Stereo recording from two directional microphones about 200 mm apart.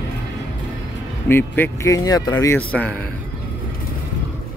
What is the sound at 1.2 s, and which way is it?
A man's voice, 10° left (ahead or behind).